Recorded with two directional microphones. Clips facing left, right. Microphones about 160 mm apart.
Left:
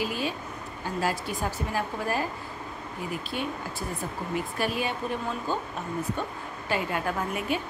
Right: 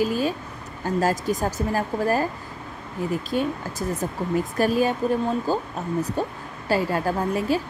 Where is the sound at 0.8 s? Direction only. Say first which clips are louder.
Right 7 dB; 45° right (ahead or behind).